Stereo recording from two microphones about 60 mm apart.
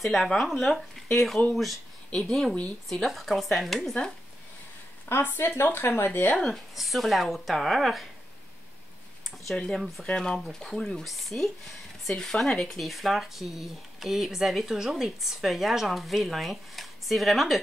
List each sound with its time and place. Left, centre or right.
0.0 s speech: centre
5.1 s speech: left
6.5 s speech: centre
10.0 s speech: centre